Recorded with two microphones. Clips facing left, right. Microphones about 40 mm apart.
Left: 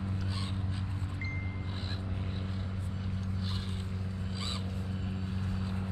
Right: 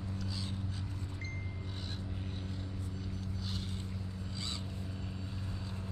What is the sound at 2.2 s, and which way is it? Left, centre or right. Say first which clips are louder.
Vehicle: left 4 dB; left.